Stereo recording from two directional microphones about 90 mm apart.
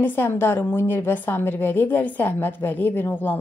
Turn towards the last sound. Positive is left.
turn(degrees=20)  # may be behind; listen again after turning